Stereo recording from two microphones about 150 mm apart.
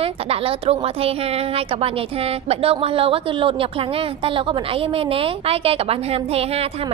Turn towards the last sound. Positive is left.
turn(degrees=-40)  # may be behind; listen again after turning